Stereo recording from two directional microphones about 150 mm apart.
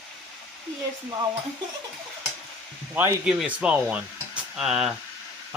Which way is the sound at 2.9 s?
20° right (ahead or behind).